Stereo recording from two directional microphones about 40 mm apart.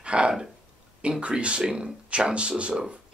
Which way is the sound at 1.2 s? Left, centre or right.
Right.